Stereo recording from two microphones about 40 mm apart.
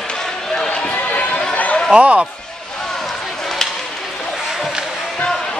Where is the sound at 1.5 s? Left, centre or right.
Left.